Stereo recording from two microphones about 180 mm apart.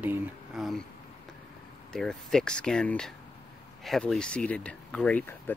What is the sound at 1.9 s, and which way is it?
Speech, 5° left (ahead or behind).